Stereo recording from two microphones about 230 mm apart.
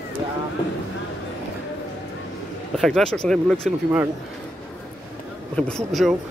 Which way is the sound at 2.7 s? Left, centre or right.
Centre.